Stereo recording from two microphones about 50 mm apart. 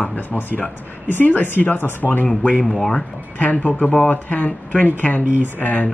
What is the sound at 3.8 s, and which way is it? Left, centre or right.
Speech, left.